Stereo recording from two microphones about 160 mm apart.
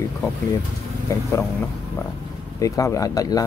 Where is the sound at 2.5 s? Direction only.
20° left (ahead or behind).